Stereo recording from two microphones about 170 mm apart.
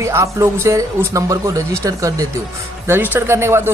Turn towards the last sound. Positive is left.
turn(degrees=-15)  # may be behind; listen again after turning